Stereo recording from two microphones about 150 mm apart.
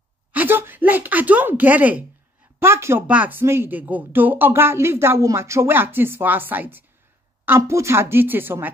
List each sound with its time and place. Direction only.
0.3 s speech: 10° right (ahead or behind)